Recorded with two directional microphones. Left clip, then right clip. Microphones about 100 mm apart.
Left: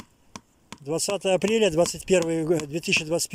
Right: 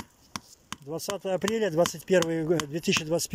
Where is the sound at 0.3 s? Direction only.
15° left (ahead or behind).